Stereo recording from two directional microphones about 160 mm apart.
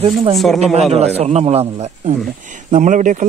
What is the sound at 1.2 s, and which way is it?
Speech, 40° right (ahead or behind).